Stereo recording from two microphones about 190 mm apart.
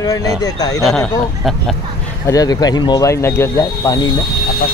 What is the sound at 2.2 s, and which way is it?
Speech, 20° left (ahead or behind).